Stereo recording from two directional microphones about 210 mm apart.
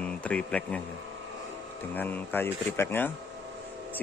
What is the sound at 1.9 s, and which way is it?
A man's voice, 10° left (ahead or behind).